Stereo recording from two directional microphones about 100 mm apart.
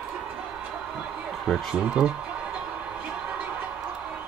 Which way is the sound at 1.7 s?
10° right (ahead or behind).